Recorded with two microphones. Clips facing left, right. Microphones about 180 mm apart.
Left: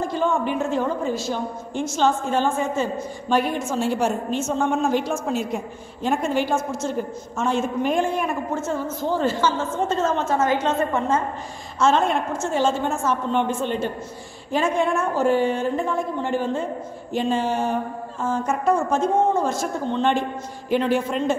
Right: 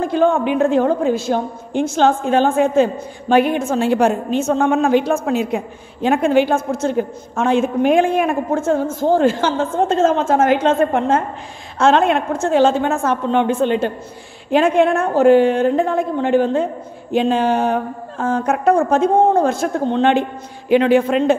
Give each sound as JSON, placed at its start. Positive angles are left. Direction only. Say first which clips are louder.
{"t": 0.0, "sound": "speech", "louder": "right 7 dB", "side_deg": -60}
{"t": 9.2, "sound": "a woman's voice", "louder": "right 6 dB", "side_deg": -90}
{"t": 14.5, "sound": "a woman's voice", "louder": "right 7 dB", "side_deg": -65}